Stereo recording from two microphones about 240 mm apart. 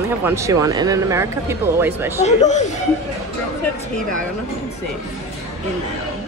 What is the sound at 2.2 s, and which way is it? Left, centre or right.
Speech, left.